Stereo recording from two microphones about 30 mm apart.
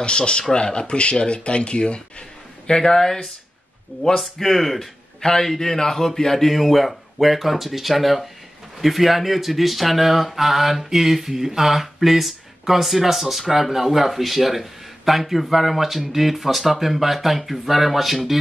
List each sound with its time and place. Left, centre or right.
0.0 s a man's voice: left
2.8 s speech: centre
4.2 s speech: centre
5.2 s speech: centre